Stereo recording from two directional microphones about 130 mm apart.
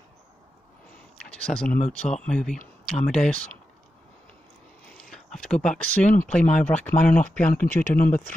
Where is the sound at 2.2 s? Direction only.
5° left (ahead or behind).